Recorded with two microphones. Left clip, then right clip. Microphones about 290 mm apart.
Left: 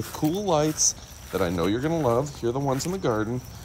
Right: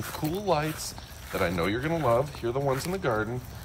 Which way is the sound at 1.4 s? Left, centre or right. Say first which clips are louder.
Left 2 dB; centre.